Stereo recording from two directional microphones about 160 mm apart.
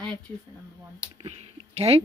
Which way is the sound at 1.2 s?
40° right (ahead or behind).